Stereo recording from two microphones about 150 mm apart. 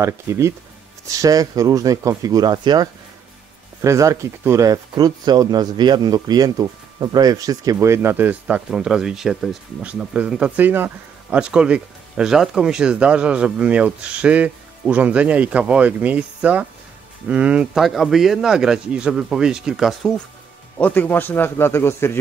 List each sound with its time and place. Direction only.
0.0 s speech: 20° right (ahead or behind); by 20.1 s centre (ahead or behind)
20.7 s a man's voice: 10° left (ahead or behind)